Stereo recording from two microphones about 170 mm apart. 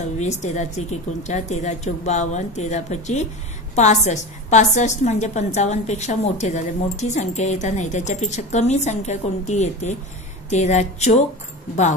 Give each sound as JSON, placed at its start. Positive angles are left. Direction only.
{"t": 0.0, "sound": "a woman's voice", "side_deg": 45}